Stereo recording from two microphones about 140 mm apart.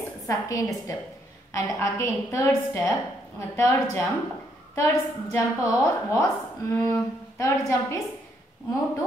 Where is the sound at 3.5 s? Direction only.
20° left (ahead or behind).